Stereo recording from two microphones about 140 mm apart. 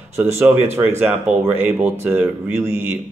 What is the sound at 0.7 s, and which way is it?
Speech, 15° right (ahead or behind).